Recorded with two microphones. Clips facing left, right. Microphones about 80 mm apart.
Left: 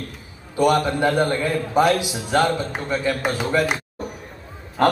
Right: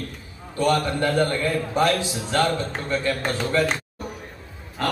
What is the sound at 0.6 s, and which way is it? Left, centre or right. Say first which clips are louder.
A man's voice: left 3 dB; centre.